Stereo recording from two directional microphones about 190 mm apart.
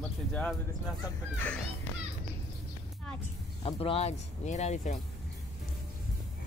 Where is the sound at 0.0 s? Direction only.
5° left (ahead or behind).